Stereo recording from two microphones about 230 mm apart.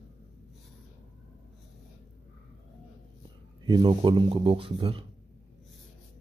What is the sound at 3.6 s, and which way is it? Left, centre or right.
Speech, centre.